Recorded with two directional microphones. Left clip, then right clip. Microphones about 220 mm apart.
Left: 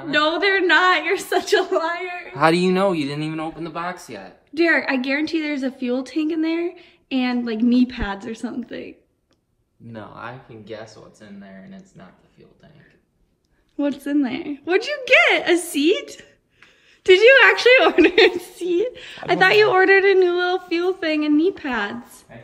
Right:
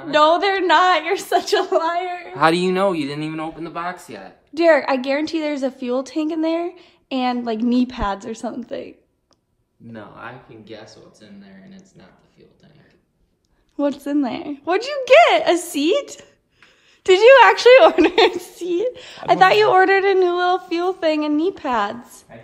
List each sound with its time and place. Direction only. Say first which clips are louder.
0.0 s a woman's voice: right 4 dB; 10° right (ahead or behind)
4.1 s a woman's voice: even; 10° right (ahead or behind)
10.1 s speech: left 1 dB; 20° left (ahead or behind)
13.7 s a woman's voice: right 1 dB; 20° right (ahead or behind)